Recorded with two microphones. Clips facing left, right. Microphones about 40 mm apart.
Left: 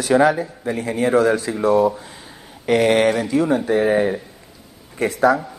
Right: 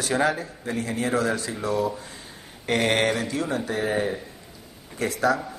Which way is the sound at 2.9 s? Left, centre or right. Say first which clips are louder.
Left 7 dB; centre.